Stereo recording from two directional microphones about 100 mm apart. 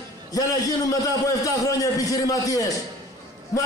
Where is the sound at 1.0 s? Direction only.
35° left (ahead or behind).